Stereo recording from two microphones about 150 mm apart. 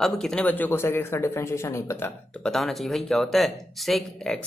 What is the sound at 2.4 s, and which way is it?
Speech, centre (ahead or behind).